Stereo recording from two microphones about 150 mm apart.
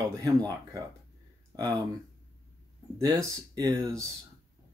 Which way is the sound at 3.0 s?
20° right (ahead or behind).